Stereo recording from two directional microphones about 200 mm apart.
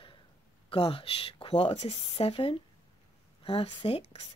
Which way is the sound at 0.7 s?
30° left (ahead or behind).